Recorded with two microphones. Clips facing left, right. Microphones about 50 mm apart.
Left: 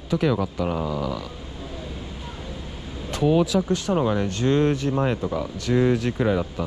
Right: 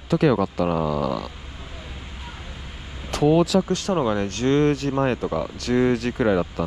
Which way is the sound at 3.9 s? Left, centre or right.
Right.